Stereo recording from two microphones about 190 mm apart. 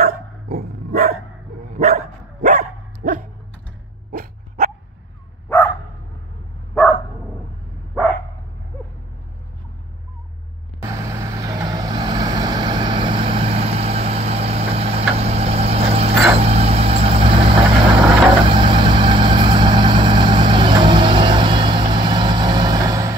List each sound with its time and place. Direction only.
0.0 s dog: 50° right (ahead or behind)
1.7 s dog: 35° right (ahead or behind); by 4.6 s 50° right (ahead or behind)
10.8 s vehicle: 20° right (ahead or behind)